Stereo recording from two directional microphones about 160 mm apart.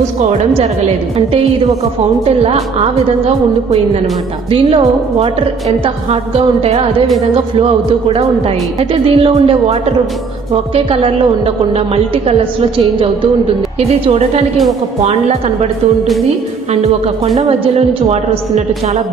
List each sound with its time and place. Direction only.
0.3 s a woman's voice: 40° right (ahead or behind)
4.5 s a woman's voice: 35° right (ahead or behind)
8.1 s a woman's voice: 35° right (ahead or behind)
17.4 s a woman's voice: 40° right (ahead or behind)